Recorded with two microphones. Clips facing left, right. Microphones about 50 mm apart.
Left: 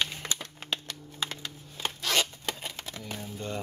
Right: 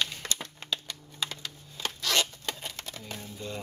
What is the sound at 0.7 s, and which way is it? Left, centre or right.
Typing, centre.